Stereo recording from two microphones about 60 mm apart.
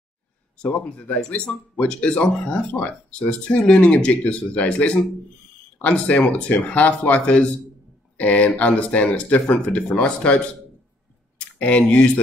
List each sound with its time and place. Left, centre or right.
0.6 s speech: centre